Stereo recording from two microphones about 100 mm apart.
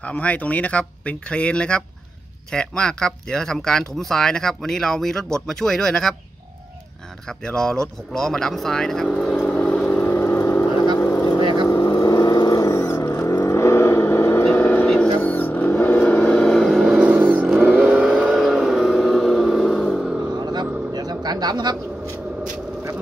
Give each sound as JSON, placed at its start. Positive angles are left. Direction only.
{"t": 0.0, "sound": "speech", "side_deg": 15}
{"t": 7.2, "sound": "speech", "side_deg": 5}
{"t": 9.5, "sound": "vehicle", "side_deg": 15}
{"t": 14.4, "sound": "a sound", "side_deg": 20}
{"t": 14.9, "sound": "vehicle", "side_deg": 10}
{"t": 17.1, "sound": "vehicle", "side_deg": -15}
{"t": 20.3, "sound": "vehicle", "side_deg": -45}
{"t": 20.9, "sound": "bird", "side_deg": -45}